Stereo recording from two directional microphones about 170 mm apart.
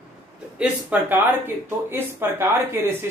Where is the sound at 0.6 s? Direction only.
10° right (ahead or behind).